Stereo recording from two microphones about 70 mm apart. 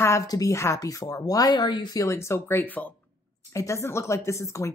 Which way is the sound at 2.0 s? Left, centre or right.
Left.